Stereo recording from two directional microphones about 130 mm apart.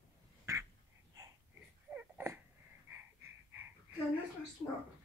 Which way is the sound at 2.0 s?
15° right (ahead or behind).